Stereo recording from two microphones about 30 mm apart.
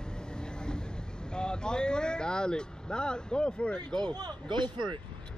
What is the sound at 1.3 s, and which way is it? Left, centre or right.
Speech, left.